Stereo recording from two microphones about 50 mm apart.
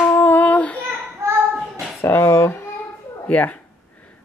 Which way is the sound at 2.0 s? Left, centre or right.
Left.